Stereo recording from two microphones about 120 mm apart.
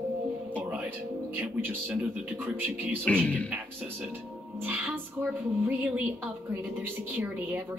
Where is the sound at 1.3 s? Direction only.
15° right (ahead or behind).